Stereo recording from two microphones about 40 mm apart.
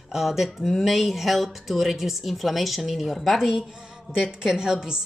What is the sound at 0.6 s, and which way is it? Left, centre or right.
Speech, centre.